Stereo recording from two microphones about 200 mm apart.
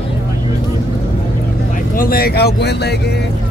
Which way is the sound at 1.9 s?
50° left (ahead or behind).